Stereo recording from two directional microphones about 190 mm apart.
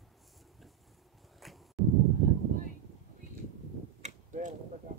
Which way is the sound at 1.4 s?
Centre (ahead or behind).